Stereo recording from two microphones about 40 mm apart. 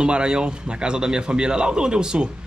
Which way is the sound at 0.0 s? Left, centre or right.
Right.